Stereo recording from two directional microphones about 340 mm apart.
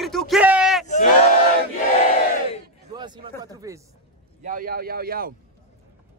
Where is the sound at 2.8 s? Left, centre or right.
Centre.